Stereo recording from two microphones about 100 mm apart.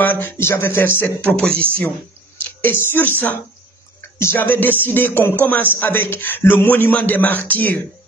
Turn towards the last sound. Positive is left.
turn(degrees=15)  # may be behind; listen again after turning